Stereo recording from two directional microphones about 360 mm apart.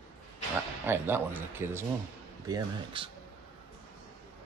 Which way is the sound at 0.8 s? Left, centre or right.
Centre.